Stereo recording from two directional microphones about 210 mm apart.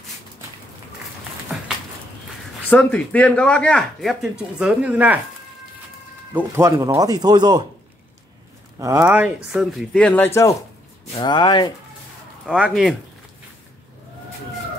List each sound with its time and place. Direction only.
2.7 s speech: 5° left (ahead or behind)
6.3 s speech: 15° right (ahead or behind)
8.7 s speech: 15° right (ahead or behind); by 10.5 s 10° left (ahead or behind)
11.1 s speech: 20° left (ahead or behind)
12.4 s speech: 5° right (ahead or behind)